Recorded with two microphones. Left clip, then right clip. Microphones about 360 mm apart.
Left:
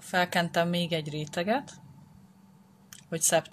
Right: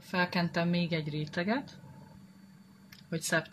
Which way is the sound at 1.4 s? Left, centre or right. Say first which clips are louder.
Left 6 dB; left.